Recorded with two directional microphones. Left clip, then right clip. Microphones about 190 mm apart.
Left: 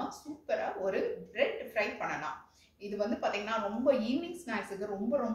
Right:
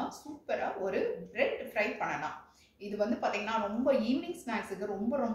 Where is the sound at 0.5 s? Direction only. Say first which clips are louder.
Left 1 dB; 10° right (ahead or behind).